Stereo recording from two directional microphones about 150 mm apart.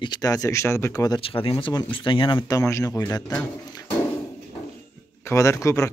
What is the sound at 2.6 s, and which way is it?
Speech, 20° left (ahead or behind).